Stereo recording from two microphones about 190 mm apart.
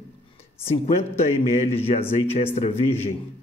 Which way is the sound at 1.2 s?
35° left (ahead or behind).